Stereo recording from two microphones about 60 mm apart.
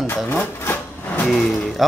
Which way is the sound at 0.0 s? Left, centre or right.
Left.